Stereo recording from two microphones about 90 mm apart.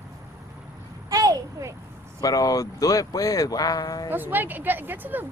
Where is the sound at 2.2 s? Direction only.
40° left (ahead or behind).